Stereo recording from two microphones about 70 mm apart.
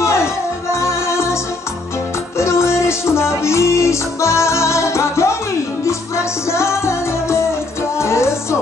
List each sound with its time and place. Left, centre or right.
0.0 s music: left